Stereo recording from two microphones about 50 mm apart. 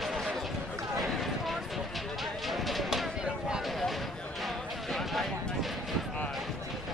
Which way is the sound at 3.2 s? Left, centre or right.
Centre.